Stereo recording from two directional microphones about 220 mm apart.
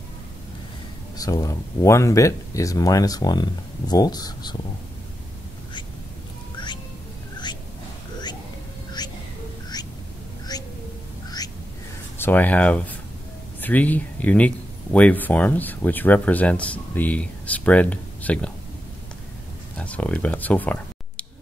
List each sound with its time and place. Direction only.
1.1 s speech: 15° left (ahead or behind)
9.0 s music: 20° left (ahead or behind)
10.5 s a sound: 15° left (ahead or behind)
12.2 s speech: 10° left (ahead or behind)
19.8 s speech: 5° left (ahead or behind)